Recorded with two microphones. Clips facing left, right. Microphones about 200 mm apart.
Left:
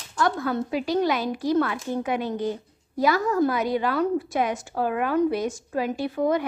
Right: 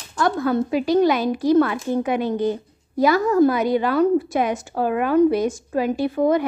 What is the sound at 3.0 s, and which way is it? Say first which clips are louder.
A woman's voice: right 5 dB; 20° right (ahead or behind).